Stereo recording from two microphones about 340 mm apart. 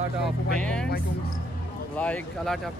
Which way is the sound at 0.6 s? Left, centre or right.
Centre.